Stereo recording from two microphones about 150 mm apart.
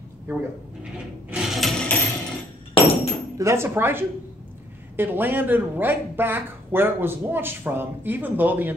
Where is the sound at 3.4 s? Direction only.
20° right (ahead or behind).